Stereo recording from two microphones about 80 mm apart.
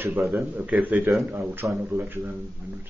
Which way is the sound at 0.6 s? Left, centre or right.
Centre.